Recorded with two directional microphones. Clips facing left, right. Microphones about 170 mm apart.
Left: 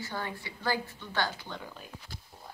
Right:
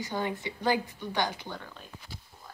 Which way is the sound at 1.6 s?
10° left (ahead or behind).